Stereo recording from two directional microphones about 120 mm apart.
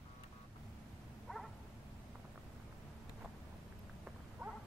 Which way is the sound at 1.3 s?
Centre (ahead or behind).